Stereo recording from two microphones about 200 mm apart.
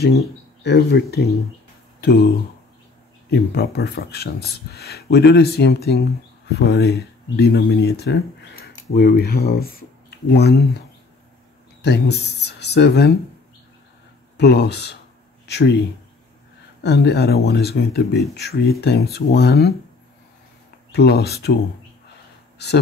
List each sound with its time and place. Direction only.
0.7 s speech: 55° left (ahead or behind)
11.8 s speech: 55° left (ahead or behind)
14.3 s speech: 55° left (ahead or behind)
16.8 s speech: 55° left (ahead or behind)
20.9 s speech: 55° left (ahead or behind)